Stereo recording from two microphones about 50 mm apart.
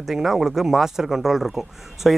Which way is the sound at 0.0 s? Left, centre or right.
Centre.